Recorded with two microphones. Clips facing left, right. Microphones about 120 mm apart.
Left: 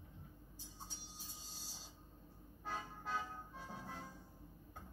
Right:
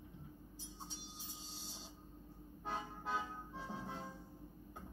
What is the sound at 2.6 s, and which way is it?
Music, 15° right (ahead or behind).